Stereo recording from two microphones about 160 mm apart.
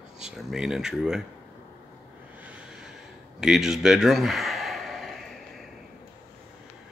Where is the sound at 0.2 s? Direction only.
5° right (ahead or behind).